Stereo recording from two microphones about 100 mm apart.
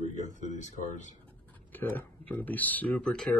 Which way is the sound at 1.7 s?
20° left (ahead or behind).